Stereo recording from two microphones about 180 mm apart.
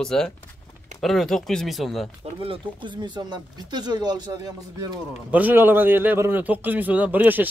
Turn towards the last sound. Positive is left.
turn(degrees=-10)  # may be behind; listen again after turning